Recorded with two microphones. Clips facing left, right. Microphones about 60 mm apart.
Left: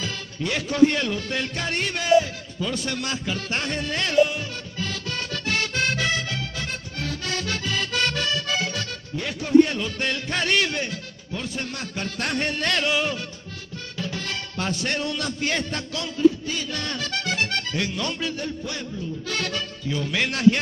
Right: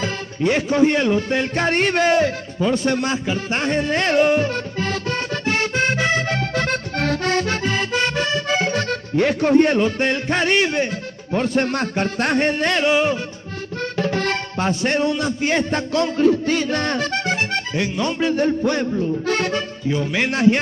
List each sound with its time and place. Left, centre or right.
0.0 s speech: right
2.6 s music: right
5.4 s accordion: right
6.3 s accordion: right
9.1 s speech: right
11.3 s speech: right
13.9 s accordion: right
14.6 s a man's voice: right
16.2 s music: right
18.3 s speech: right